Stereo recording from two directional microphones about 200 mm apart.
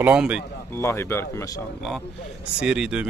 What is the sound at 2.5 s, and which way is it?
Speech, 5° right (ahead or behind).